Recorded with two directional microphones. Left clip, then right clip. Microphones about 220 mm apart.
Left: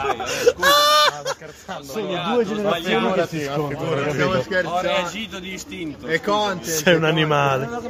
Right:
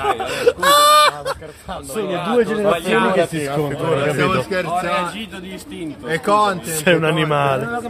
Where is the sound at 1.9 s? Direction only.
10° right (ahead or behind).